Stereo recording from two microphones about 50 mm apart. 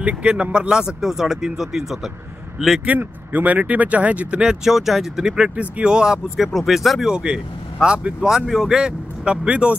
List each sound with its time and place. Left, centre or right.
0.0 s speech: right; by 2.7 s centre
3.0 s speech: right; by 6.2 s centre
6.3 s speech: centre
7.1 s speech: centre
8.3 s speech: centre